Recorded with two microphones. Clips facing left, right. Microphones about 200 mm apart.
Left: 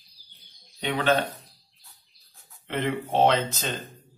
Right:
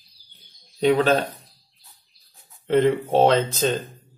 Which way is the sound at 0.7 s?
35° right (ahead or behind).